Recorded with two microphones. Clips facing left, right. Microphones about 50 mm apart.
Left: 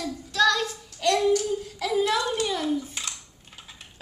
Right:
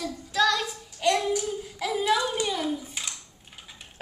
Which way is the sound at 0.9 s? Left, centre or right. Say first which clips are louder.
Left 3 dB; centre.